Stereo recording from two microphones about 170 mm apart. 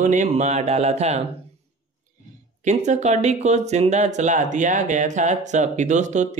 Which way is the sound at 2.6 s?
45° right (ahead or behind).